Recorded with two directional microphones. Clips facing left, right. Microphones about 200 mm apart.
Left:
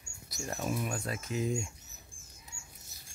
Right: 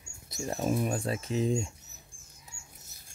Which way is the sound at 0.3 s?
30° right (ahead or behind).